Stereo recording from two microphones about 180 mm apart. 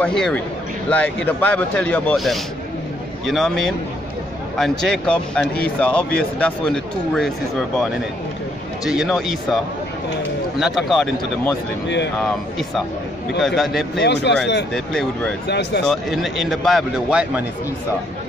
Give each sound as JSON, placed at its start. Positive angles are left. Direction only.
{"t": 0.0, "sound": "a man's voice", "side_deg": 5}
{"t": 8.8, "sound": "speech", "side_deg": 0}
{"t": 10.6, "sound": "speech", "side_deg": 0}
{"t": 13.9, "sound": "speech", "side_deg": 70}
{"t": 14.7, "sound": "speech", "side_deg": 0}
{"t": 15.4, "sound": "speech", "side_deg": 70}
{"t": 15.9, "sound": "speech", "side_deg": 0}